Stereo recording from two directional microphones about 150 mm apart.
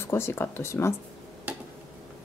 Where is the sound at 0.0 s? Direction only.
15° left (ahead or behind).